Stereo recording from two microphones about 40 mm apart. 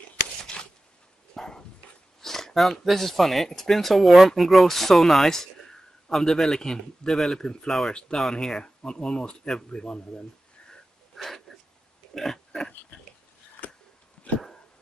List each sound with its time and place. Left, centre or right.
0.5 s a sound: centre
1.3 s dog: centre
2.2 s a sound: centre
2.8 s a man's voice: centre; by 10.2 s left
10.7 s wheeze: centre
12.1 s oink: centre
14.3 s dog: left